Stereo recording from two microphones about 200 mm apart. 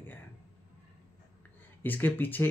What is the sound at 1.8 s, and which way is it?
Speech, 10° left (ahead or behind).